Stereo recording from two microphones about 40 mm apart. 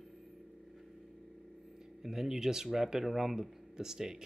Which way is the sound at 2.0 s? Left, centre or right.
Centre.